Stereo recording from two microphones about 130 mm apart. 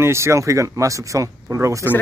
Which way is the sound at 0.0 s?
20° right (ahead or behind).